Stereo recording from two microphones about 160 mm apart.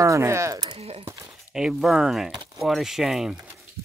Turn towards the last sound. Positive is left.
turn(degrees=-5)  # may be behind; listen again after turning